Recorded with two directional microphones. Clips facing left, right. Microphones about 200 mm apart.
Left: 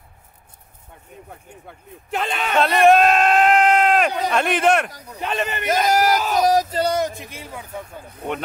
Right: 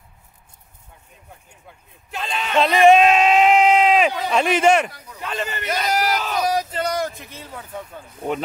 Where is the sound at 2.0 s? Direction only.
60° left (ahead or behind).